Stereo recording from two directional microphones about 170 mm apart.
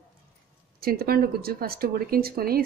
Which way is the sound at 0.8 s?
60° right (ahead or behind).